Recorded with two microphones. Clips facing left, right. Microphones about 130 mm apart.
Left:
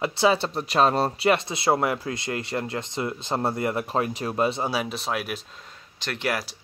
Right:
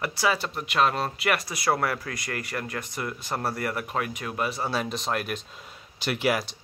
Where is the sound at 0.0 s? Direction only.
25° left (ahead or behind).